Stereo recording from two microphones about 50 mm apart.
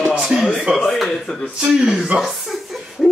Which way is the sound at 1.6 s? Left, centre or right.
Centre.